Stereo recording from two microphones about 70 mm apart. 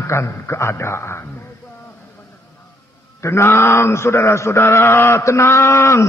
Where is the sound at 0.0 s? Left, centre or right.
Left.